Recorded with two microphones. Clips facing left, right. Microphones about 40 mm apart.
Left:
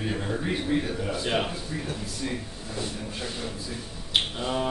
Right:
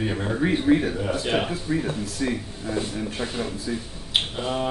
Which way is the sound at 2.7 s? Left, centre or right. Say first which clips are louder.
Right 7 dB; right.